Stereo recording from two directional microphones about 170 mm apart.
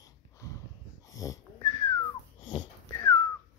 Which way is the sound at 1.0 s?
20° left (ahead or behind).